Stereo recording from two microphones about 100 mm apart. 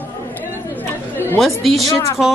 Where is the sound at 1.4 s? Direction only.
Centre (ahead or behind).